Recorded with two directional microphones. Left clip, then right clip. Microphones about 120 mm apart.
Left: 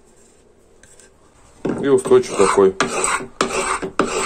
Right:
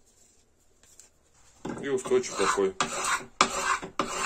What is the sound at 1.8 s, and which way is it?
Speech, 10° left (ahead or behind).